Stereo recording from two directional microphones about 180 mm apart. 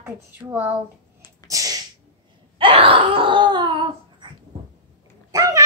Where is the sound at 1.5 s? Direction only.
20° right (ahead or behind).